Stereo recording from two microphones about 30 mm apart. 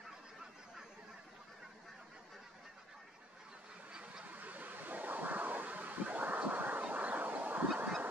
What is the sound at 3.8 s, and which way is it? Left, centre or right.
Duck, right.